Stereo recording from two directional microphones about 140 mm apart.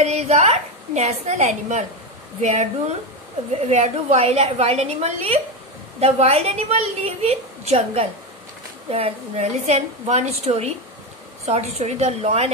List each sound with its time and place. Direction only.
0.0 s a woman's voice: 50° right (ahead or behind)